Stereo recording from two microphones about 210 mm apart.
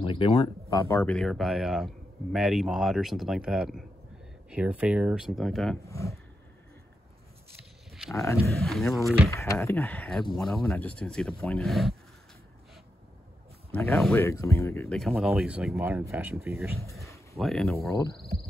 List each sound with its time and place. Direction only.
0.0 s speech: 25° left (ahead or behind)
0.7 s speech: 15° left (ahead or behind)
5.9 s speech: 15° left (ahead or behind)
8.1 s speech: 15° left (ahead or behind)
8.5 s speech: centre (ahead or behind)
9.3 s speech: 15° left (ahead or behind)
13.9 s speech: centre (ahead or behind)
14.2 s speech: 10° left (ahead or behind)
15.0 s speech: centre (ahead or behind)
17.0 s a sound: 15° left (ahead or behind)
17.4 s speech: centre (ahead or behind)
17.8 s speech: 15° left (ahead or behind)